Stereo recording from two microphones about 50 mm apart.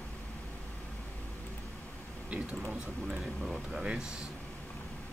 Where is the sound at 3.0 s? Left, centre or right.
Centre.